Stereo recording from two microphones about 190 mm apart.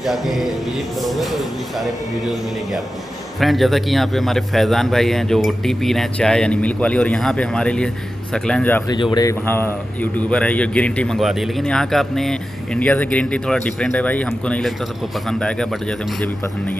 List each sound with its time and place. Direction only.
0.0 s a man's voice: centre (ahead or behind)
3.3 s a man's voice: centre (ahead or behind)
8.9 s speech: 25° left (ahead or behind)
10.1 s a man's voice: 5° left (ahead or behind)